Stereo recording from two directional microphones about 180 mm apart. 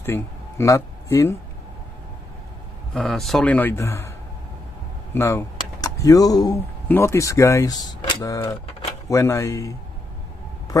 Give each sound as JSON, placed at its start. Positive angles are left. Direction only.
{"t": 0.0, "sound": "speech", "side_deg": 15}
{"t": 2.9, "sound": "a man's voice", "side_deg": 0}
{"t": 5.1, "sound": "a man's voice", "side_deg": 15}